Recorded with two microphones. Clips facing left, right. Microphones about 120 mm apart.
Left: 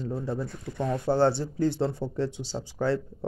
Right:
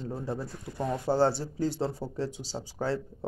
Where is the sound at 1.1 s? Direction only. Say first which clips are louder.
Left 2 dB; 40° right (ahead or behind).